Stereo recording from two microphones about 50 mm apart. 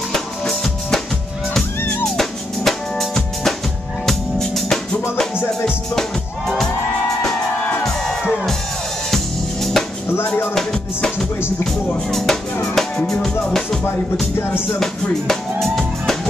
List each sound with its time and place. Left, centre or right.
2.0 s drum kit: centre
4.0 s music: centre
7.8 s music: centre
9.1 s drum kit: centre
10.1 s music: left
10.5 s music: centre
14.8 s music: centre